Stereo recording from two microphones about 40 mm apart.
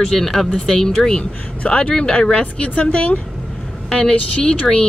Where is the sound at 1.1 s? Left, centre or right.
Left.